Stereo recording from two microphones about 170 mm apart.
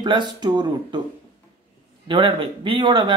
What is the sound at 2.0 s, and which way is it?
Speech, 30° right (ahead or behind).